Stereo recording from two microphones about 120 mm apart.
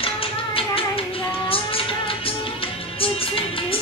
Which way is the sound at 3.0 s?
50° left (ahead or behind).